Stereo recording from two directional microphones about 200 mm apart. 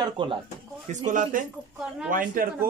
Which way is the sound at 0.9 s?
40° right (ahead or behind).